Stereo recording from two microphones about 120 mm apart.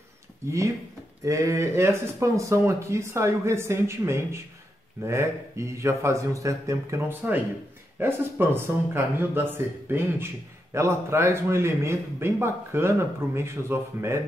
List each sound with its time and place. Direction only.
1.2 s speech: 25° right (ahead or behind)